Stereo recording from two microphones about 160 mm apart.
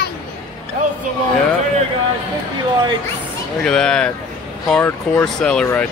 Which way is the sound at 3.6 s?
5° left (ahead or behind).